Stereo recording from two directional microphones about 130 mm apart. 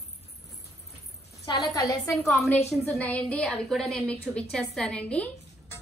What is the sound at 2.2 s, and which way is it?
A woman's voice, centre (ahead or behind).